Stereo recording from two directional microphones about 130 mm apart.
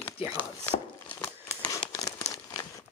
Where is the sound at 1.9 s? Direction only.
25° left (ahead or behind).